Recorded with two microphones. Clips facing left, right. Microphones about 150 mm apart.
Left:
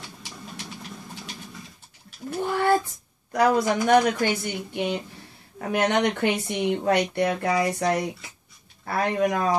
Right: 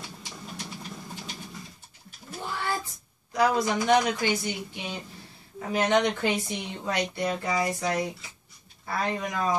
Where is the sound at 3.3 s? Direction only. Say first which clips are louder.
Left 3 dB; 50° left (ahead or behind).